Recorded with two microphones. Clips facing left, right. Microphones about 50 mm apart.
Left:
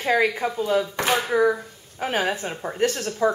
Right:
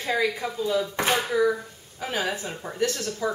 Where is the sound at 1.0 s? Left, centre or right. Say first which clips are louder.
Left 2 dB; centre.